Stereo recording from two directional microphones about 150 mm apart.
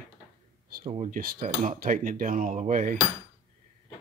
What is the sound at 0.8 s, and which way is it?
Speech, 50° right (ahead or behind).